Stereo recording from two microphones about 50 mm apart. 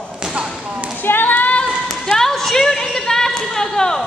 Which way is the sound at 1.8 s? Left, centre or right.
Centre.